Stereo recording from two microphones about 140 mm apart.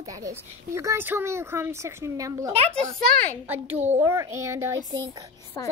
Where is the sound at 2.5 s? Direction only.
45° right (ahead or behind).